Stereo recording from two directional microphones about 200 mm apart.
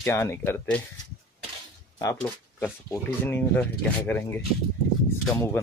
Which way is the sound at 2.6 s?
10° left (ahead or behind).